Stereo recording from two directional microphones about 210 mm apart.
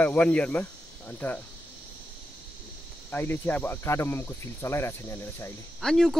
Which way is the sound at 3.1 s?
10° left (ahead or behind).